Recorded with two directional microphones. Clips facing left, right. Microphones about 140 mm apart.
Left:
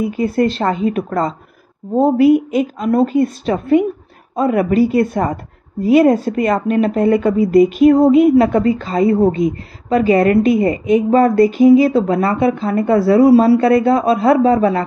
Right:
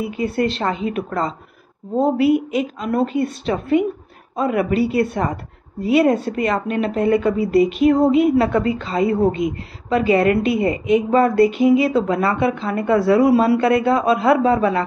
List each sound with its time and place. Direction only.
0.1 s a woman's voice: 35° left (ahead or behind)